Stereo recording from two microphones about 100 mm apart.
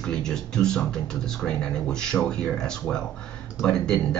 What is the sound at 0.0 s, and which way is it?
Speech, 5° left (ahead or behind).